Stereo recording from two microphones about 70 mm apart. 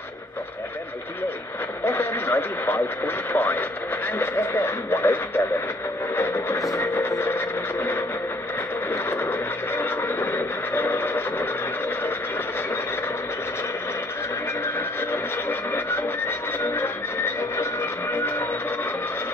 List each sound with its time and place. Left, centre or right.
1.9 s radio: left
3.3 s speech: left
4.2 s radio: left
6.1 s a sound: left
6.6 s a sound: left
8.9 s vehicle: left
9.3 s vehicle: left
16.7 s music: left